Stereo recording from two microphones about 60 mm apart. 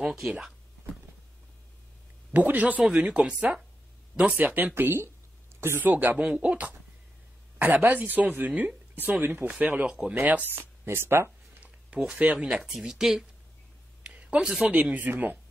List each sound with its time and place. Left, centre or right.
0.1 s speech: centre
2.3 s speech: right
4.7 s speech: right
5.8 s speech: right
6.2 s speech: centre
9.8 s speech: centre
10.5 s speech: right
12.2 s speech: right
12.6 s speech: centre
14.0 s a sound: right
14.7 s speech: right